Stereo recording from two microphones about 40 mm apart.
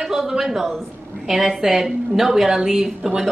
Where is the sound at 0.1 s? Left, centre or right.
Centre.